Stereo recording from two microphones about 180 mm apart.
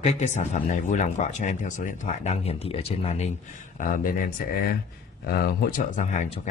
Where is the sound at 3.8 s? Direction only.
50° left (ahead or behind).